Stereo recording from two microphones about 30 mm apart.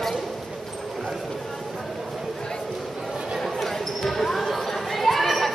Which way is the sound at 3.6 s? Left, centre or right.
Centre.